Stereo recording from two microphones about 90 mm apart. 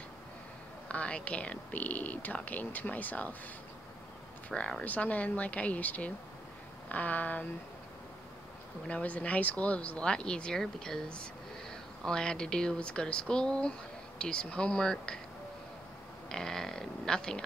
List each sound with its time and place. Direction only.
0.8 s speech: 15° left (ahead or behind)
4.5 s speech: 10° left (ahead or behind)
8.8 s speech: 15° left (ahead or behind)
12.0 s speech: 10° left (ahead or behind)
16.3 s speech: 5° left (ahead or behind)